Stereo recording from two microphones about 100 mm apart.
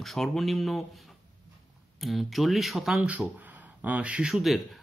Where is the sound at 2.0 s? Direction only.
Centre (ahead or behind).